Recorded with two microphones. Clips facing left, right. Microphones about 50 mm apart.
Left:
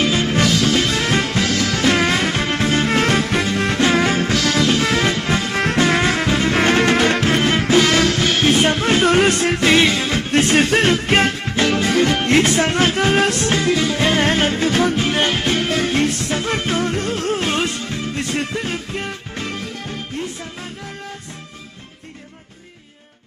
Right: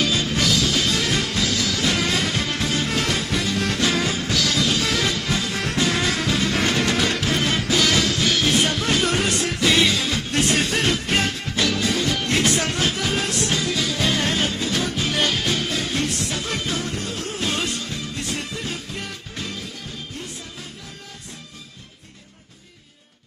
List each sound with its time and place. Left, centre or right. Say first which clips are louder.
0.0 s music: left 5 dB; left
1.5 s music: left 5 dB; left